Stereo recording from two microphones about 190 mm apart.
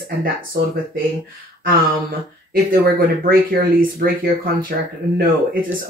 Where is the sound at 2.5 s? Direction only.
50° right (ahead or behind).